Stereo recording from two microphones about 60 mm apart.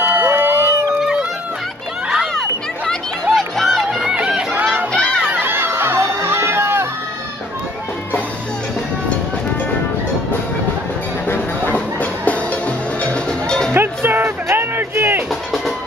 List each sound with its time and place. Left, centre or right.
0.0 s a sound: right
3.3 s music: centre
4.1 s run: centre
5.2 s music: right
11.2 s music: left; by 13.7 s centre
13.7 s music: right